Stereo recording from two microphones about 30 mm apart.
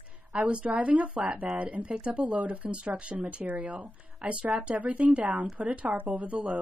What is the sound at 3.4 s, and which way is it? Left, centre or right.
Speech, right.